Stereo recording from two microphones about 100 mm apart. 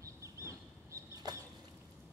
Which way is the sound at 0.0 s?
30° right (ahead or behind).